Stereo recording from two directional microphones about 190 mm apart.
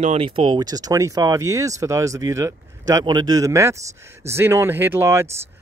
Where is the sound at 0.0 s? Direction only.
30° right (ahead or behind).